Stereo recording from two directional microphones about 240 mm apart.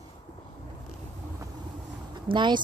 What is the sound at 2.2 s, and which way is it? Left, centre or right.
Speech, centre.